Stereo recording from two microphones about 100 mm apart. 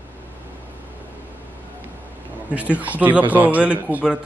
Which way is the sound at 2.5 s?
15° right (ahead or behind).